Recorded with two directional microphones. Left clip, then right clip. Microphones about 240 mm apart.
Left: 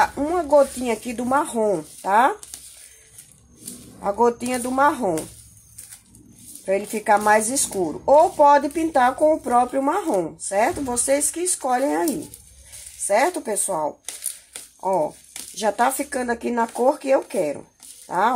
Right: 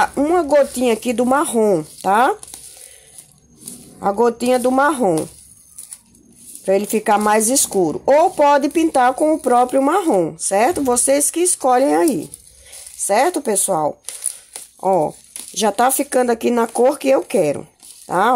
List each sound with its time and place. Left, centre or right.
0.0 s a woman's voice: right
4.0 s a woman's voice: right
6.6 s a woman's voice: right